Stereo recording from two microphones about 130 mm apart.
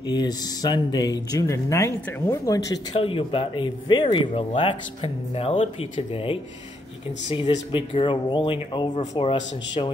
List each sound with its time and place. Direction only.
0.0 s speech: 30° left (ahead or behind)
3.0 s speech: 45° left (ahead or behind)
4.3 s speech: 55° left (ahead or behind)
4.6 s speech: 45° left (ahead or behind)